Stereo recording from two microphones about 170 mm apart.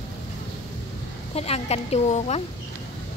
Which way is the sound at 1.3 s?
35° left (ahead or behind).